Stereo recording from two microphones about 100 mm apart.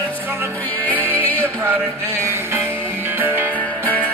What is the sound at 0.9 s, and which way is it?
Music, 20° right (ahead or behind).